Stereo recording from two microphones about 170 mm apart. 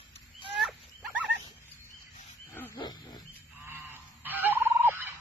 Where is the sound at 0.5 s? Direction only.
5° right (ahead or behind).